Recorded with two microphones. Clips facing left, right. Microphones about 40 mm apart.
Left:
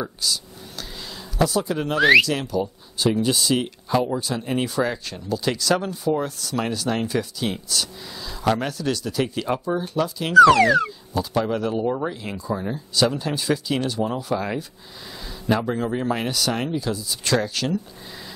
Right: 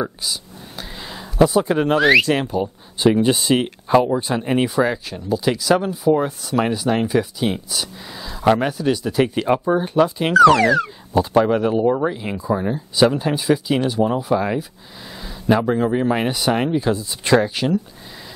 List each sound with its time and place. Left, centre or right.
0.0 s a sound: centre
2.0 s speech: centre
2.2 s speech: right